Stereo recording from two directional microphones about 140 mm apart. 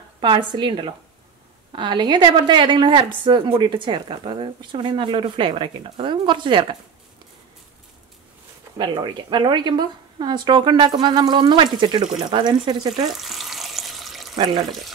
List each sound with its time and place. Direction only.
0.2 s a woman's voice: 35° right (ahead or behind)
8.7 s a woman's voice: 35° right (ahead or behind)
13.1 s frying: centre (ahead or behind)